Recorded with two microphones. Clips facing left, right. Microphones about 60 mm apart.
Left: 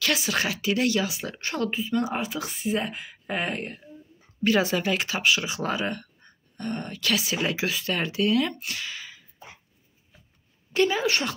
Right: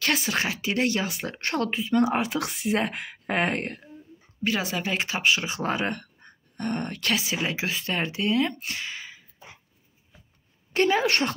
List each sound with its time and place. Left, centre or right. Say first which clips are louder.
0.0 s speech: right 1 dB; right
0.3 s speech: left 1 dB; right
1.0 s speech: even; right
1.4 s a woman's voice: right 1 dB; right
1.8 s speech: right 4 dB; right
4.6 s speech: left 2 dB; right
7.1 s speech: left 2 dB; right
10.7 s a woman's voice: right 1 dB; right